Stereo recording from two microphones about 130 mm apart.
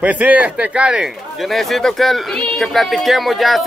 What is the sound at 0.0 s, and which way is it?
Speech, 10° right (ahead or behind).